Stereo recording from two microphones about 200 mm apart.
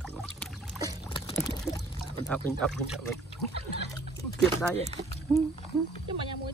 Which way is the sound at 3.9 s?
15° left (ahead or behind).